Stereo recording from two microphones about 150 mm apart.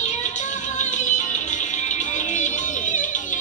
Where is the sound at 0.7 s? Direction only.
55° left (ahead or behind).